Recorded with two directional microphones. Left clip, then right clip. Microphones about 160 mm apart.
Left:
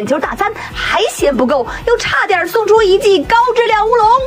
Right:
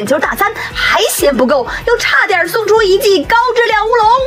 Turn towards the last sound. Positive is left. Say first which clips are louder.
# even
turn(degrees=15)  # may be behind; listen again after turning